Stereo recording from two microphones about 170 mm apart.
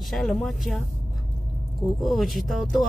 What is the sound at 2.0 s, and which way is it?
Speech, centre (ahead or behind).